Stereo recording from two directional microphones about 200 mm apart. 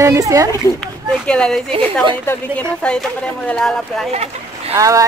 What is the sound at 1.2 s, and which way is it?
Speech, 5° left (ahead or behind).